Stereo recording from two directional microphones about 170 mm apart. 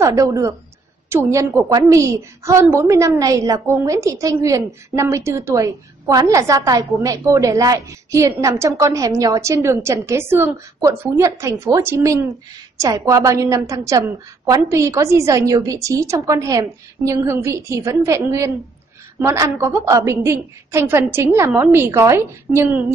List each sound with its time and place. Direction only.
0.0 s a woman's voice: 20° right (ahead or behind)